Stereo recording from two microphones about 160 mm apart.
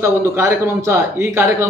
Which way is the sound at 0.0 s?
15° right (ahead or behind).